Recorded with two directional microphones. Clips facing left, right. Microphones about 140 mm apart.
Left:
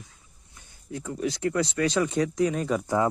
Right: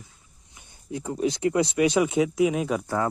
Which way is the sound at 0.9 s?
20° right (ahead or behind).